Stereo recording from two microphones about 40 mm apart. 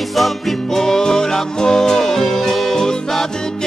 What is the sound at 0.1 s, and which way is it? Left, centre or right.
Music, centre.